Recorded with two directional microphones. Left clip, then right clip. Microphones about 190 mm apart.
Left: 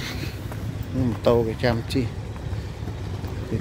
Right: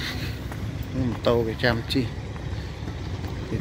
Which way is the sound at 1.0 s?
30° left (ahead or behind).